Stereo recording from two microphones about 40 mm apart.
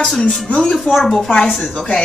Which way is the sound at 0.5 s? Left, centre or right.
Left.